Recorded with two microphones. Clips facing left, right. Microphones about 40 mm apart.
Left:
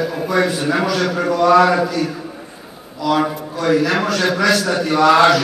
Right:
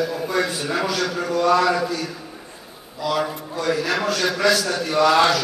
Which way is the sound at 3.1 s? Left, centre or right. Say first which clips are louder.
Left 6 dB; left.